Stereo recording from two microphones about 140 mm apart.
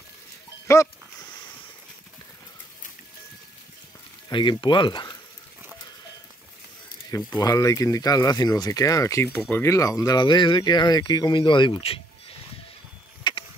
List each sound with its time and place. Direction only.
4.3 s speech: 35° left (ahead or behind)
7.3 s speech: 25° left (ahead or behind)
13.2 s a sound: 40° left (ahead or behind)